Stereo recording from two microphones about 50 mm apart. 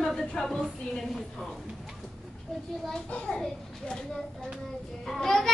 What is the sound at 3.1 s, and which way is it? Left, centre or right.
Speech, left.